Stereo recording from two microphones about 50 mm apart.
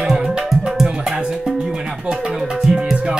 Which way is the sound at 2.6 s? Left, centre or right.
Centre.